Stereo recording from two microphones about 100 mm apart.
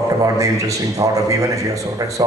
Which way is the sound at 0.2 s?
35° right (ahead or behind).